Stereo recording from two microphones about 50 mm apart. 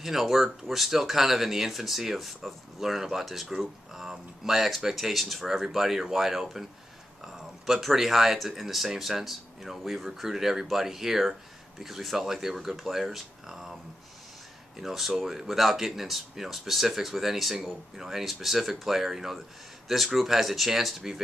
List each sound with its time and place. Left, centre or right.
0.0 s speech: centre
14.8 s speech: centre